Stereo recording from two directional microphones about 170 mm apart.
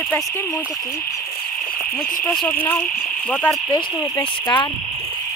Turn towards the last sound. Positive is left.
turn(degrees=25)  # may be behind; listen again after turning